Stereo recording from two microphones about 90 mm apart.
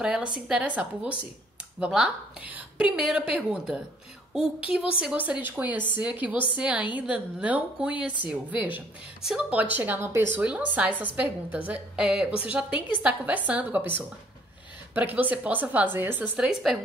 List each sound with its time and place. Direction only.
0.0 s a woman's voice: 10° right (ahead or behind)
2.4 s a woman's voice: 15° right (ahead or behind)
5.0 s a woman's voice: 15° right (ahead or behind)
10.4 s a woman's voice: 15° right (ahead or behind)
16.3 s a woman's voice: 5° right (ahead or behind)